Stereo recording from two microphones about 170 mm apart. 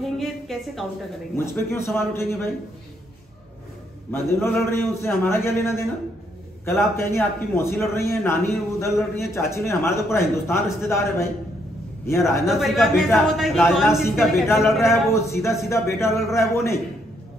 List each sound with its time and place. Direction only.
0.0 s a sound: centre (ahead or behind)
1.3 s a man's voice: 15° left (ahead or behind)
4.1 s a man's voice: 15° left (ahead or behind)
12.4 s a man's voice: centre (ahead or behind)
14.0 s a man's voice: 15° left (ahead or behind)